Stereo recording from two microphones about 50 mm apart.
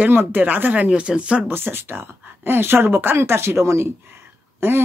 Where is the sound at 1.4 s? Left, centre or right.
Right.